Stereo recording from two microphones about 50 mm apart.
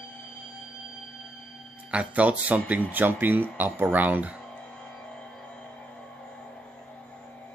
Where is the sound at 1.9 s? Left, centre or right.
Right.